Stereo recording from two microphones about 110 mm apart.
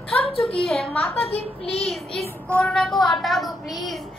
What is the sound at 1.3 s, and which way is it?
Speech, 65° left (ahead or behind).